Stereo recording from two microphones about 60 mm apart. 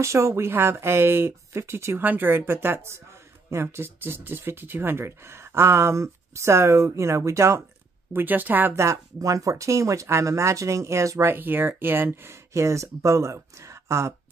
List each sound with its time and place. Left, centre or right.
0.0 s speech: right
8.1 s speech: right
8.7 s speech: right
11.2 s speech: right
12.5 s speech: right